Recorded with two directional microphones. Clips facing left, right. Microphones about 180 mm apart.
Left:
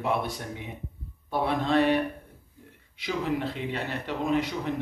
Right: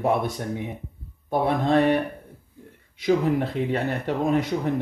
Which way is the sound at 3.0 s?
45° right (ahead or behind).